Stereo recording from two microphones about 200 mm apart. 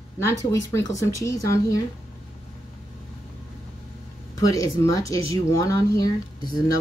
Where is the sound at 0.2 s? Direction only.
15° left (ahead or behind).